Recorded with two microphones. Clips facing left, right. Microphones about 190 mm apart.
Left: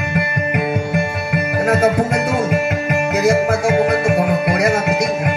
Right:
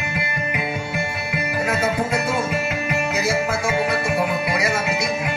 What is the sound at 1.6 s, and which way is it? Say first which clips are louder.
Music: left 8 dB; 65° left (ahead or behind).